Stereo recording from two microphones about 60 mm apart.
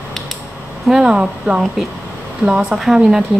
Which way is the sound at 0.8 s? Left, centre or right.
Centre.